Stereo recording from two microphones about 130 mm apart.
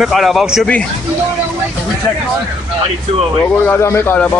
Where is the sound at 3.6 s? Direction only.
20° left (ahead or behind).